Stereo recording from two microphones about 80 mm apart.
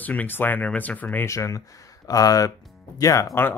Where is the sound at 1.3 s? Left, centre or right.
Left.